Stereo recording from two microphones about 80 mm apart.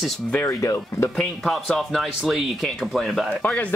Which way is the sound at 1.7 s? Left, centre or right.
Centre.